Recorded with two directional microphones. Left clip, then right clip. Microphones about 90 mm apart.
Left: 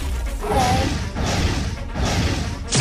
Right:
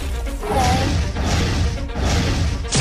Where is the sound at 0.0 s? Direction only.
Centre (ahead or behind).